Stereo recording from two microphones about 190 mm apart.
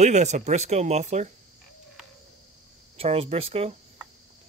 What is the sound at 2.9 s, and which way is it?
Speech, 30° right (ahead or behind).